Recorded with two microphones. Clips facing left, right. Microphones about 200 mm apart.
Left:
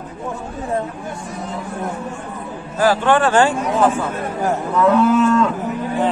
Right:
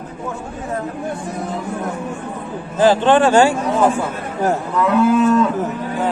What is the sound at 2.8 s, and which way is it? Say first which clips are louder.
Speech: right 3 dB; 20° right (ahead or behind).